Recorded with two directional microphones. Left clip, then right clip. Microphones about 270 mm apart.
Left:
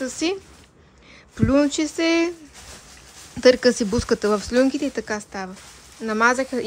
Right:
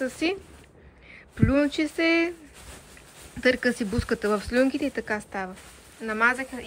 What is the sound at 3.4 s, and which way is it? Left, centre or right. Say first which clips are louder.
Speech: left 8 dB; centre.